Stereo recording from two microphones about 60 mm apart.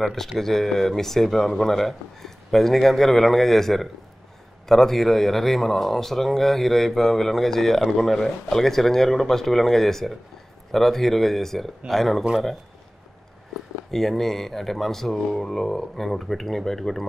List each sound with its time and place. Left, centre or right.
0.0 s speech: centre
13.9 s speech: centre